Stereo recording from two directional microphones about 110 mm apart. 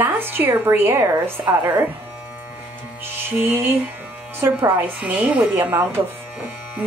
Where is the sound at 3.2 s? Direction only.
20° right (ahead or behind).